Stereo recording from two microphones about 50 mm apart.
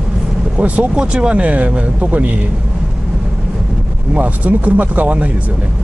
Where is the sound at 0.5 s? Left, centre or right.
Right.